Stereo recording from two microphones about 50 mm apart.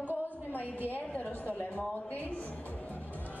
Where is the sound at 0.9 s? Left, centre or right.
Left.